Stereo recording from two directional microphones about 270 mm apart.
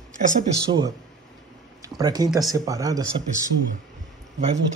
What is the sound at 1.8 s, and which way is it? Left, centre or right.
Speech, centre.